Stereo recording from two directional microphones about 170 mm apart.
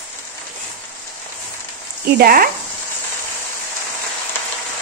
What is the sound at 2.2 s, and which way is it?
Speech, 60° right (ahead or behind).